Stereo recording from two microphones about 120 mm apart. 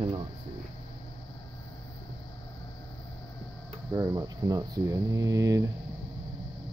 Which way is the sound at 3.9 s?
25° right (ahead or behind).